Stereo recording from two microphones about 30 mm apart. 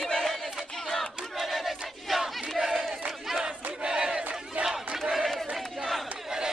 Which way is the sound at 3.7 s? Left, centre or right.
Right.